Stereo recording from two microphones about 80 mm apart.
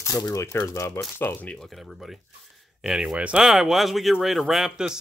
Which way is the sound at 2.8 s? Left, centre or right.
Centre.